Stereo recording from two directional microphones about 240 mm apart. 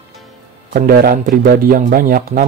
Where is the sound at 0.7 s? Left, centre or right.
Right.